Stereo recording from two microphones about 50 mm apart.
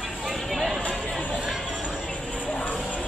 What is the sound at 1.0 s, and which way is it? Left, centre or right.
Chatter, centre.